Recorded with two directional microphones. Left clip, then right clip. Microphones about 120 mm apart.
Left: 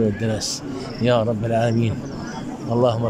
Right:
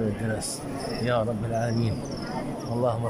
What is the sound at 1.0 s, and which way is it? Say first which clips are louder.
A man's voice: left 8 dB; 20° left (ahead or behind).